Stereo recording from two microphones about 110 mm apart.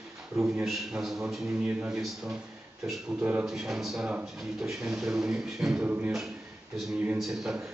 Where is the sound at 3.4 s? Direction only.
5° right (ahead or behind).